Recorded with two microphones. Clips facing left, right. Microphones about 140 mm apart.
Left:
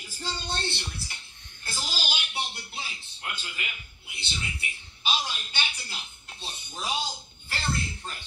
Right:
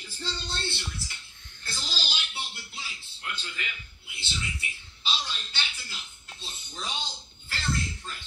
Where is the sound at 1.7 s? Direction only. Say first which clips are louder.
Left 3 dB; 10° left (ahead or behind).